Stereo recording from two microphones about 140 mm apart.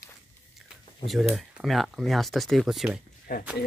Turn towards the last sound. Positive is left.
turn(degrees=90)